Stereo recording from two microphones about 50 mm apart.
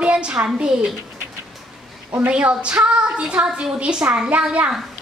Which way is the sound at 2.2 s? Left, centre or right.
Right.